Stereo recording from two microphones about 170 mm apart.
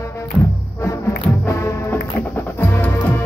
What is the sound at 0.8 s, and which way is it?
Music, 15° left (ahead or behind).